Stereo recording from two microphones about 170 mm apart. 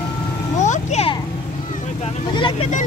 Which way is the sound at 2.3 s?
30° left (ahead or behind).